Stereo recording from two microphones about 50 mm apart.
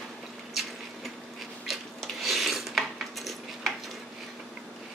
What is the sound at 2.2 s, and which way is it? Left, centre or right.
Dishes, centre.